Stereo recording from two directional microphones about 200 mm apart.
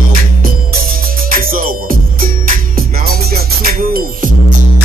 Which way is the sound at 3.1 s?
50° right (ahead or behind).